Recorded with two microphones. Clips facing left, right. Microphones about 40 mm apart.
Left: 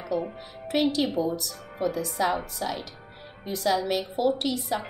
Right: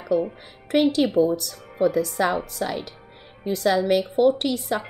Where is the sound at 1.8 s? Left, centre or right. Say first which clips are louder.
Right 7 dB; right.